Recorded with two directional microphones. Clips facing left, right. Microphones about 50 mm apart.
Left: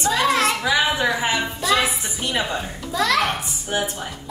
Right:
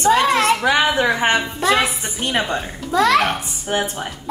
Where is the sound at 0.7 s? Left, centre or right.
Right.